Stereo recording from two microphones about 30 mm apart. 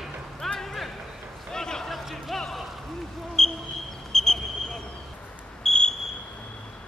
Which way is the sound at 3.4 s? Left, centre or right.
Centre.